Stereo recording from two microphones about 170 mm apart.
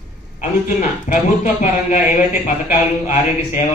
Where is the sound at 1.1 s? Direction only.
40° left (ahead or behind).